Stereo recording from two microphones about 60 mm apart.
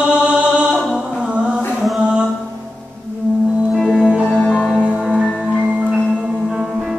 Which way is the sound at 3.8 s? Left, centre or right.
Centre.